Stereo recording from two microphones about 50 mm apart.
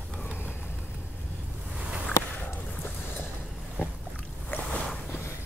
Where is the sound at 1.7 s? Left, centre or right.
Right.